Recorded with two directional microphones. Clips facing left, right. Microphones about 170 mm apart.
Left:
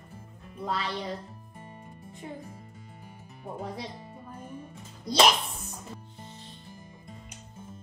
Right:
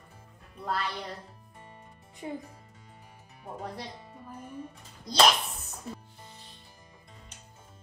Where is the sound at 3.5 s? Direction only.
Centre (ahead or behind).